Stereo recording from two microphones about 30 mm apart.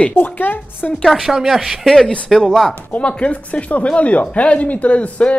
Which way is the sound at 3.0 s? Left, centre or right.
Left.